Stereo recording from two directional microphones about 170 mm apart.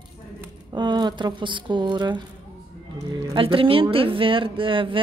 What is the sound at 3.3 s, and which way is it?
Speech, 30° right (ahead or behind).